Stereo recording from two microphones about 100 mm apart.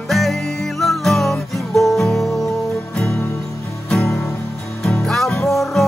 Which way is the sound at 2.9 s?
15° left (ahead or behind).